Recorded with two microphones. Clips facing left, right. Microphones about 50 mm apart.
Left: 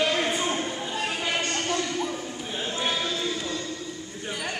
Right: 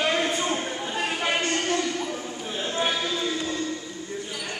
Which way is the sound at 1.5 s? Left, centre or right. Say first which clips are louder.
Right 2 dB; centre.